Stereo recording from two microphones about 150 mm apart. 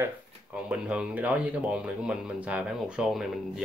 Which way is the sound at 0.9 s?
10° right (ahead or behind).